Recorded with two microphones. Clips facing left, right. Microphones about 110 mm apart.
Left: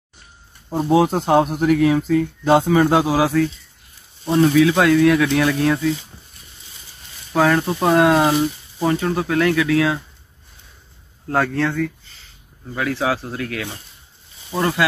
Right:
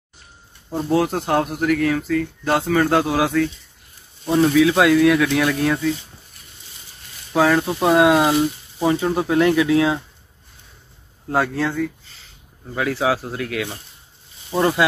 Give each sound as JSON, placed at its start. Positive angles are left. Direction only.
{"t": 0.8, "sound": "speech", "side_deg": 20}
{"t": 7.3, "sound": "speech", "side_deg": -5}
{"t": 11.2, "sound": "speech", "side_deg": -10}